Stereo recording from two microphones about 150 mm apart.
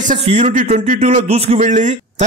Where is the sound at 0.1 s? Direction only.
50° right (ahead or behind).